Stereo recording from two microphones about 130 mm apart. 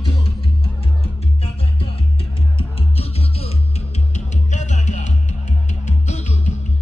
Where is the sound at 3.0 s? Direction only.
50° left (ahead or behind).